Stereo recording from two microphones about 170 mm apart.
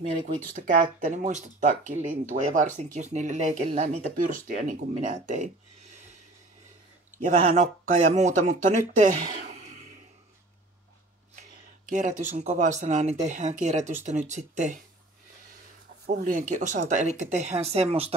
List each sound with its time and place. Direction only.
0.4 s speech: 50° right (ahead or behind)
7.2 s speech: 45° right (ahead or behind)
11.9 s speech: 45° right (ahead or behind)
16.2 s speech: 50° right (ahead or behind)